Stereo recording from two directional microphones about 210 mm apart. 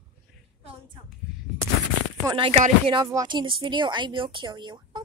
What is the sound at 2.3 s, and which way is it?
Speech, 25° right (ahead or behind).